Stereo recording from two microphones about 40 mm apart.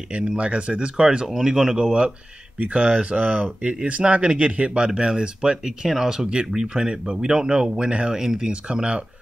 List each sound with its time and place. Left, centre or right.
0.1 s speech: right
1.8 s speech: right
3.8 s speech: right
8.2 s speech: centre